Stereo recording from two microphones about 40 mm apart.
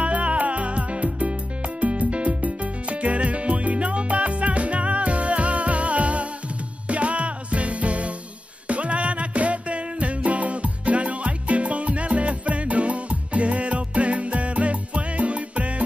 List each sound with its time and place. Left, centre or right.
0.0 s music: right